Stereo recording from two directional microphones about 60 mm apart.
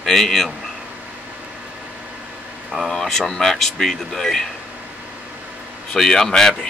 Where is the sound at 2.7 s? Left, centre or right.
Centre.